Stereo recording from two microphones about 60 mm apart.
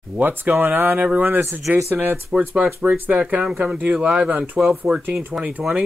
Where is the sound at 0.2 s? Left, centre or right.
Right.